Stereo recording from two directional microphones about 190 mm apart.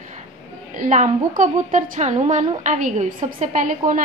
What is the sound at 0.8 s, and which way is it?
A woman's voice, 40° right (ahead or behind).